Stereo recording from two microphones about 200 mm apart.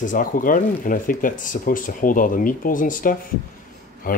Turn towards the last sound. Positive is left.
turn(degrees=45)  # may be behind; listen again after turning